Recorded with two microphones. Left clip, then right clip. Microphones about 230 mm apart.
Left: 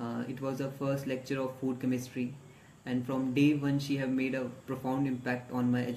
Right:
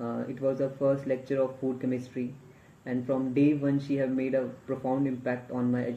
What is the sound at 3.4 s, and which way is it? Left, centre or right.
Speech, centre.